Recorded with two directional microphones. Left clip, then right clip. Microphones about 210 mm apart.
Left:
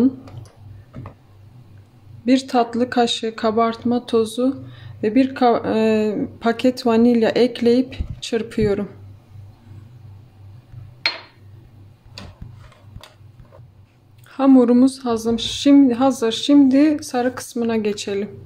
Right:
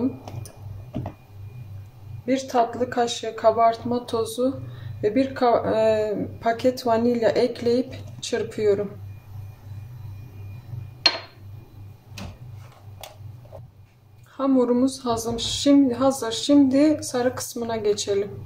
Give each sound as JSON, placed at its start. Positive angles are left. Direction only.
{"t": 2.2, "sound": "speech", "side_deg": 40}
{"t": 14.3, "sound": "speech", "side_deg": 30}